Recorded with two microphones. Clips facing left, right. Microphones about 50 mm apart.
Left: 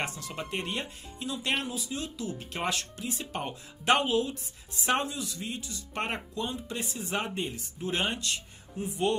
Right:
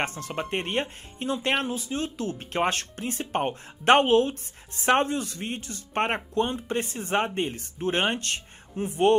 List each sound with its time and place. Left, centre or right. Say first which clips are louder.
0.0 s speech: right 5 dB; right